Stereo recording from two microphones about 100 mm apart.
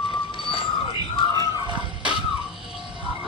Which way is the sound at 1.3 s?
40° right (ahead or behind).